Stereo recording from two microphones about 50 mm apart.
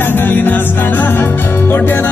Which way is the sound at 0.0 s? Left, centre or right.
Left.